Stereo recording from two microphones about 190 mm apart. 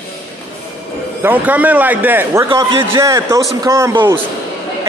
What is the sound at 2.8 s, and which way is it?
A man's voice, 15° right (ahead or behind).